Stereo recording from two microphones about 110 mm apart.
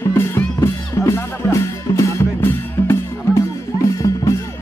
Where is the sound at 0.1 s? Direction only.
20° left (ahead or behind).